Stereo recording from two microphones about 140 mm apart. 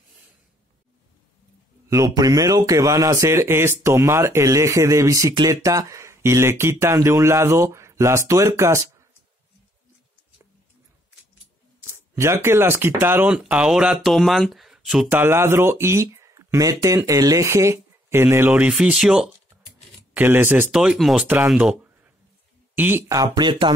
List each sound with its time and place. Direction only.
1.9 s speech: 25° right (ahead or behind)
11.8 s speech: 20° right (ahead or behind); by 15.1 s 5° right (ahead or behind)
15.1 s speech: 15° right (ahead or behind)
18.5 s speech: 5° right (ahead or behind)
20.2 s speech: 15° right (ahead or behind)
21.5 s a sound: 5° right (ahead or behind)
22.8 s speech: 15° right (ahead or behind); by 23.7 s 35° right (ahead or behind)